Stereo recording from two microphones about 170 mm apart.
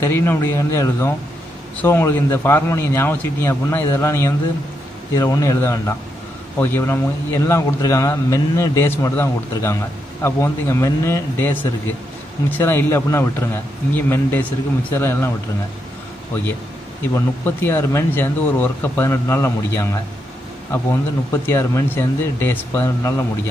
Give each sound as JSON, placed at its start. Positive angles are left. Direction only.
{"t": 0.0, "sound": "a man's voice", "side_deg": 15}
{"t": 17.1, "sound": "a man's voice", "side_deg": 15}